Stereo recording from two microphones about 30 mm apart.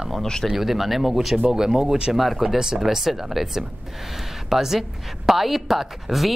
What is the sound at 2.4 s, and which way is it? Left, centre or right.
Speech, centre.